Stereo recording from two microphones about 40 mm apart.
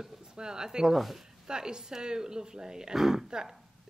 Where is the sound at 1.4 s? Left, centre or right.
Centre.